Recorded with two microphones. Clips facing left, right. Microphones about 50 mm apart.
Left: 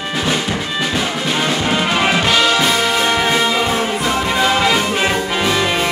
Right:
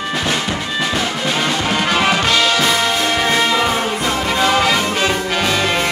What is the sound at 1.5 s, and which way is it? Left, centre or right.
Music, centre.